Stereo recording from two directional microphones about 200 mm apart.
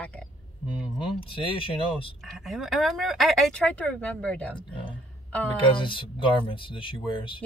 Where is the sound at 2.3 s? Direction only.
Centre (ahead or behind).